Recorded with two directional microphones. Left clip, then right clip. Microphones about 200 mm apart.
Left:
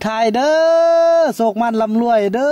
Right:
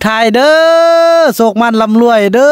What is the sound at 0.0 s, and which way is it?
Speech, 40° right (ahead or behind).